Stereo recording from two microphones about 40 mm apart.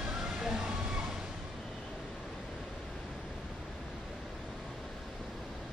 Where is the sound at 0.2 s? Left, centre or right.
Centre.